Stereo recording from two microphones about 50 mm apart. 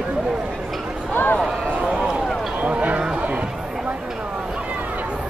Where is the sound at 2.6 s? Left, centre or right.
Right.